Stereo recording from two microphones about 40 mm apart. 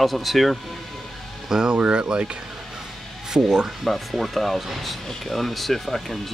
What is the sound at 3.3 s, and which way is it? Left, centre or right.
Speech, centre.